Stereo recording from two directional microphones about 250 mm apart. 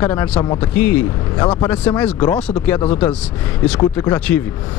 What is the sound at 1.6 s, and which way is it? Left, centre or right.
Speech, centre.